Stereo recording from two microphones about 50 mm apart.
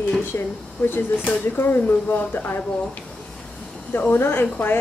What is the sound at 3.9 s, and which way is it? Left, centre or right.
Speech, left.